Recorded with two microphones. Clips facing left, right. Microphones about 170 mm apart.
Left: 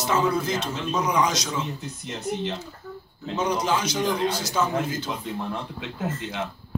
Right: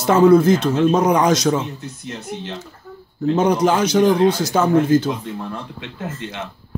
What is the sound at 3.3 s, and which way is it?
A man's voice, 50° right (ahead or behind).